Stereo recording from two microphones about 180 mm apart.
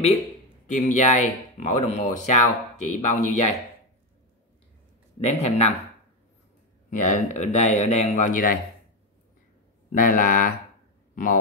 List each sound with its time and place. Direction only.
0.7 s speech: 40° left (ahead or behind)
5.2 s speech: 35° left (ahead or behind)
6.9 s speech: 45° left (ahead or behind)
9.9 s speech: 50° left (ahead or behind)